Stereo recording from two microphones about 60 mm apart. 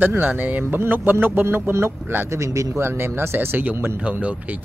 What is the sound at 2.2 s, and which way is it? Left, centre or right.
Speech, right.